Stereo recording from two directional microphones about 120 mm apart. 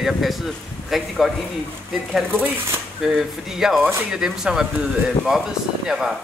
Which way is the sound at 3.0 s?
5° right (ahead or behind).